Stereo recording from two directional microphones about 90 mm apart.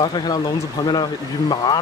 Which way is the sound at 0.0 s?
50° left (ahead or behind).